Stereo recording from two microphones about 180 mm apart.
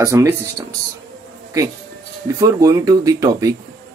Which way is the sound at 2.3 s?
20° right (ahead or behind).